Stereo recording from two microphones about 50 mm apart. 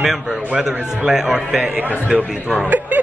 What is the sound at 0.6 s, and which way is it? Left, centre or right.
A man's voice, centre.